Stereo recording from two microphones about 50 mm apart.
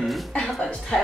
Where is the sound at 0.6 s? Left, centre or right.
Centre.